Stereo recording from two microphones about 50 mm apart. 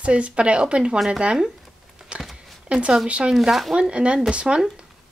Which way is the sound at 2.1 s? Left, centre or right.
Right.